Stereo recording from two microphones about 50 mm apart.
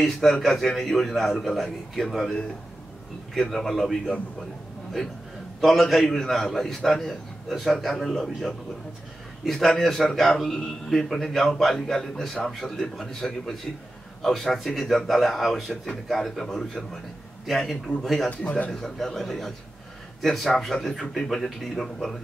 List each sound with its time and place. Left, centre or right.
0.0 s a man's voice: centre
3.3 s a man's voice: centre
5.6 s a man's voice: centre
18.4 s a man's voice: left
18.7 s a man's voice: centre